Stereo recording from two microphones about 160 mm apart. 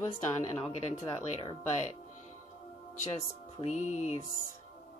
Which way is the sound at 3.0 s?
45° left (ahead or behind).